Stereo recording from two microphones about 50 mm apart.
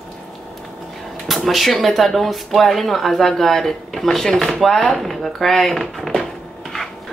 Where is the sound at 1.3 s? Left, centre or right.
Centre.